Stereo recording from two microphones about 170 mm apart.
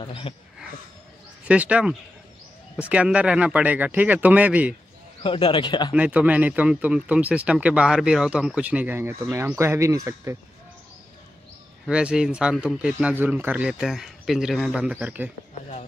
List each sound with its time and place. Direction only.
0.0 s speech: 30° left (ahead or behind)
1.4 s speech: 5° right (ahead or behind)
5.2 s speech: 30° left (ahead or behind)
5.9 s speech: 10° right (ahead or behind)
11.8 s a man's voice: 5° right (ahead or behind)